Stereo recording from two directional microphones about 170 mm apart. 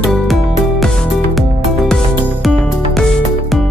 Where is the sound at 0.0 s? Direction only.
Centre (ahead or behind).